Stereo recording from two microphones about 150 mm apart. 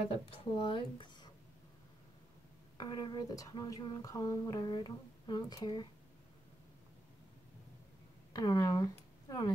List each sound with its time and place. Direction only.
0.6 s speech: 35° left (ahead or behind)
2.8 s speech: 30° left (ahead or behind)
8.3 s speech: 25° left (ahead or behind)